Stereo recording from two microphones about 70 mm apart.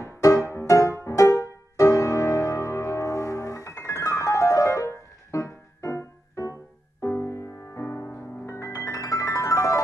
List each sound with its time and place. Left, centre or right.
0.0 s music: left